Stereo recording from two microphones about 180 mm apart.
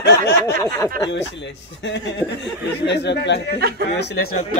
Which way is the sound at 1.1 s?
85° left.